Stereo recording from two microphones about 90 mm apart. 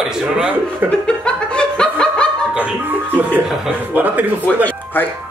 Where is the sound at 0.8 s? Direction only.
10° left (ahead or behind).